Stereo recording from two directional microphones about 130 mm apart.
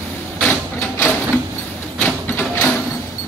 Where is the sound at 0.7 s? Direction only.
20° left (ahead or behind).